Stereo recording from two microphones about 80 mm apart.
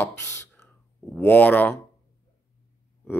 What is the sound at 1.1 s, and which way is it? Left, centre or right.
Speech, left.